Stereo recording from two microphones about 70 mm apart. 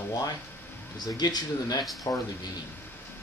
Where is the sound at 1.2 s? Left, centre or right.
Left.